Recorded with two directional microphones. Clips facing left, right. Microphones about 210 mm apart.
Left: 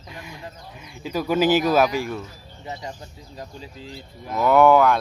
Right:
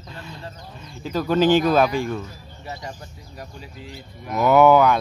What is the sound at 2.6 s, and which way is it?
Speech, 20° left (ahead or behind).